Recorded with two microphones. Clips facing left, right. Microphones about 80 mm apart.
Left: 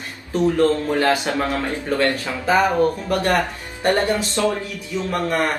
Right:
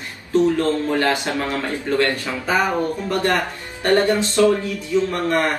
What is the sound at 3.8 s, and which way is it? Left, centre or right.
Speech, left.